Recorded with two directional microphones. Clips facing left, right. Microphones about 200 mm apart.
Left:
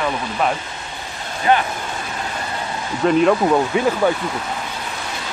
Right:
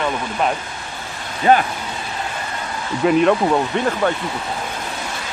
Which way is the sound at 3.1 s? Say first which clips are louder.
Even; centre (ahead or behind).